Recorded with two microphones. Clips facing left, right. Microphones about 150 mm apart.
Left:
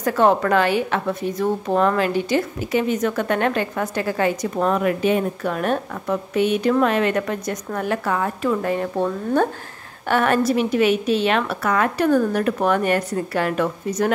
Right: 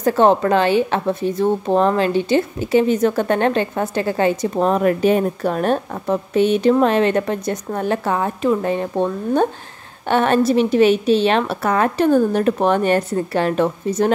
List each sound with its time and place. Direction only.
0.0 s a woman's voice: 25° right (ahead or behind)